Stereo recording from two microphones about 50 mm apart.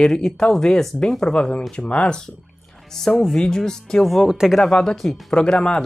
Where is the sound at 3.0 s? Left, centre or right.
Centre.